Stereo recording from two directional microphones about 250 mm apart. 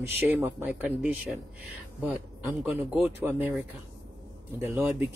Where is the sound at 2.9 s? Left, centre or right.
Centre.